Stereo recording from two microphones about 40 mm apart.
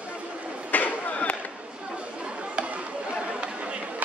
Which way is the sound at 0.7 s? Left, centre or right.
Left.